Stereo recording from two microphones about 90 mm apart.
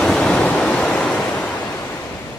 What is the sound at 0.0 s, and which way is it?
Waves, 5° left (ahead or behind).